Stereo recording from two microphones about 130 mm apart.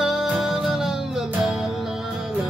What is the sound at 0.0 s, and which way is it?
Music, centre (ahead or behind).